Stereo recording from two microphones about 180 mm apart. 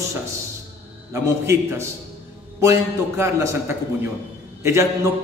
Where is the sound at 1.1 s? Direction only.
15° right (ahead or behind).